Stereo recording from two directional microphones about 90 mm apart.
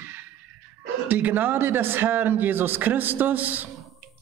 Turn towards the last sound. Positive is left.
turn(degrees=-20)  # may be behind; listen again after turning